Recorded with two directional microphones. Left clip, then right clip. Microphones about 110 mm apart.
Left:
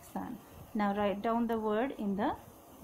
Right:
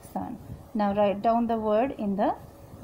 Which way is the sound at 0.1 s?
55° right (ahead or behind).